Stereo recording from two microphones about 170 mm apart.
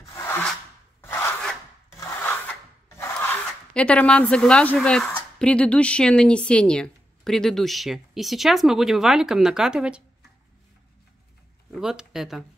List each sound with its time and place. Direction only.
0.0 s rub: 15° left (ahead or behind)
3.7 s speech: 5° left (ahead or behind)
11.7 s speech: 5° right (ahead or behind)